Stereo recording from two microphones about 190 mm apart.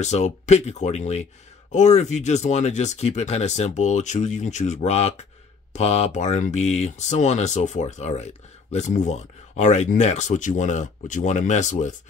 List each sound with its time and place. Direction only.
0.0 s speech: 35° left (ahead or behind)